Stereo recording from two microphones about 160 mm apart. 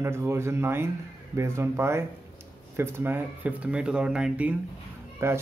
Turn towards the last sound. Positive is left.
turn(degrees=-15)  # may be behind; listen again after turning